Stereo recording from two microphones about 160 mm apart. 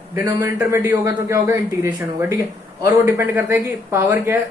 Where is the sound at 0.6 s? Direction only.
15° right (ahead or behind).